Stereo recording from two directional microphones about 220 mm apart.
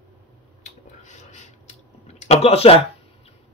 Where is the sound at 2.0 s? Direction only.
30° left (ahead or behind).